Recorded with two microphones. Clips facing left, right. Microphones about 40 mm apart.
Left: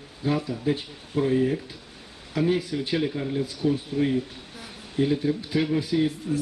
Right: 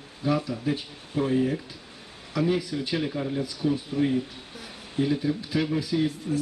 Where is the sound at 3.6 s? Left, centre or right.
Centre.